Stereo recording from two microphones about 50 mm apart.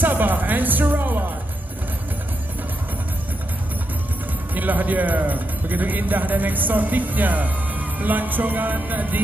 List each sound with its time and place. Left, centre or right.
0.0 s music: right
4.6 s a man's voice: right